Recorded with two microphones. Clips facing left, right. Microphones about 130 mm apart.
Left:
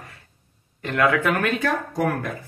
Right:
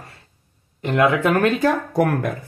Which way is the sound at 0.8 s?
20° right (ahead or behind).